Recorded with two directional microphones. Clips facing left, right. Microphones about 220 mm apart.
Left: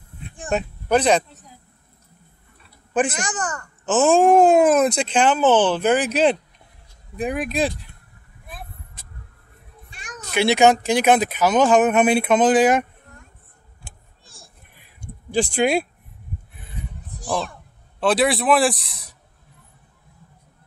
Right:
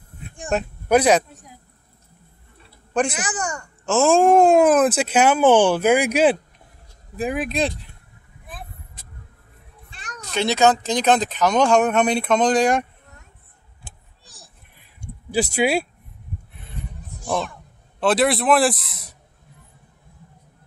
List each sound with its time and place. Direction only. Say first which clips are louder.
0.8 s speech: right 2 dB; 10° right (ahead or behind)
2.9 s speech: left 1 dB; 5° left (ahead or behind)
3.2 s speech: even; 10° right (ahead or behind)
3.8 s speech: even; centre (ahead or behind)
9.8 s speech: left 1 dB; 10° left (ahead or behind)
15.3 s speech: left 1 dB; 10° right (ahead or behind)
18.0 s speech: even; centre (ahead or behind)